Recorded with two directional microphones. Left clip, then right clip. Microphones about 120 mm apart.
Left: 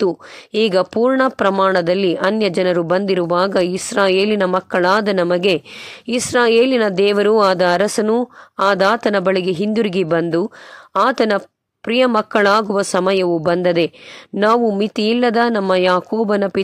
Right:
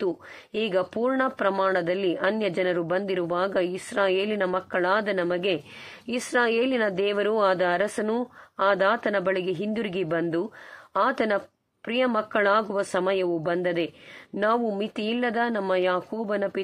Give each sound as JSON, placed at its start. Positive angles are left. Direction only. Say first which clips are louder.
{"t": 0.0, "sound": "speech", "louder": "left 10 dB", "side_deg": 50}
{"t": 6.0, "sound": "speech", "louder": "left 9 dB", "side_deg": 40}
{"t": 14.3, "sound": "speech", "louder": "left 9 dB", "side_deg": 35}
{"t": 14.8, "sound": "speech", "louder": "left 11 dB", "side_deg": 55}